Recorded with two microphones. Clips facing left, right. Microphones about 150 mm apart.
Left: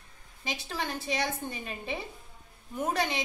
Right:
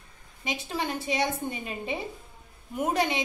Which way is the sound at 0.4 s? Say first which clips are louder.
Right 4 dB; 15° right (ahead or behind).